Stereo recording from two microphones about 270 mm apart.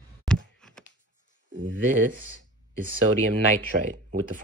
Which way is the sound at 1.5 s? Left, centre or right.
Right.